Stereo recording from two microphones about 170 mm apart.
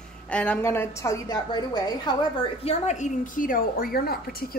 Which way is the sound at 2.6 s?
40° left (ahead or behind).